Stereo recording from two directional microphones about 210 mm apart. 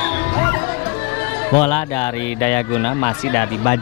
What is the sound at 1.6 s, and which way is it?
A man's voice, 10° left (ahead or behind).